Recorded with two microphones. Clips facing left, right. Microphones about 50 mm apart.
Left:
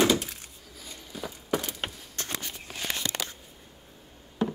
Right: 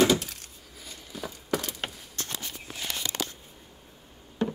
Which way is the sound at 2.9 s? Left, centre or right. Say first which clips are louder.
Even; left.